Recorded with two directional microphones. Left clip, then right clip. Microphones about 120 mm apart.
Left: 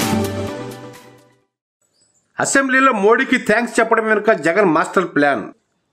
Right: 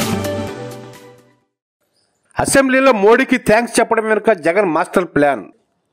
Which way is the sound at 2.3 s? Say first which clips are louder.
Right 2 dB; 45° right (ahead or behind).